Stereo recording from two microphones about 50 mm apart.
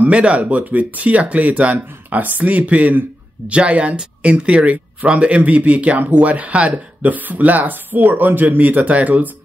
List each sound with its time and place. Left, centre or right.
0.0 s speech: right